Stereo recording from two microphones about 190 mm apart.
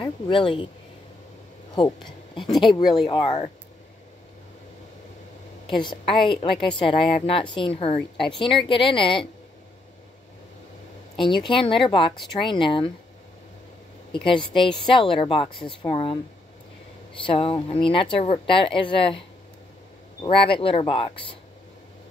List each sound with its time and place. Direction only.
0.0 s speech: 25° left (ahead or behind)
1.8 s a woman's voice: 25° left (ahead or behind)
3.1 s a woman's voice: 25° left (ahead or behind)
5.8 s a woman's voice: 25° left (ahead or behind)
11.1 s a woman's voice: 25° left (ahead or behind)
14.1 s a woman's voice: 25° left (ahead or behind)
17.2 s a woman's voice: 30° left (ahead or behind)